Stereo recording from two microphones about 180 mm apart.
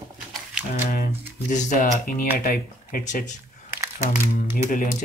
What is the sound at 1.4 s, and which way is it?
Speech, 45° left (ahead or behind).